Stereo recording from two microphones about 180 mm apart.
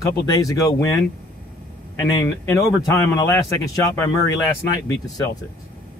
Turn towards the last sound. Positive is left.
turn(degrees=20)  # may be behind; listen again after turning